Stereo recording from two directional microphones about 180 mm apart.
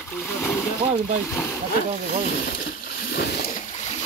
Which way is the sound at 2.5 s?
65° left (ahead or behind).